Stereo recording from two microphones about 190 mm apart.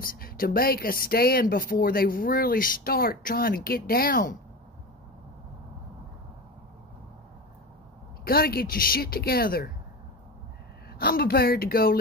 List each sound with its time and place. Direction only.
0.0 s speech: 50° left (ahead or behind)
8.3 s speech: 55° left (ahead or behind)
11.0 s speech: 55° left (ahead or behind)